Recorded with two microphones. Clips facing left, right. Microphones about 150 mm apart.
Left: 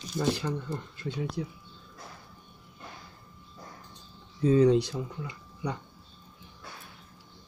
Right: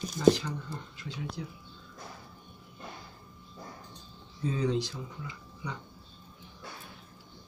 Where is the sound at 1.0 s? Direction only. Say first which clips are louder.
Left 8 dB; 55° left (ahead or behind).